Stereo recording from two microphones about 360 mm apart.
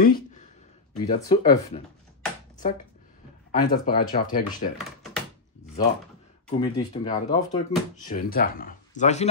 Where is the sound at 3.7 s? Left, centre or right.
Left.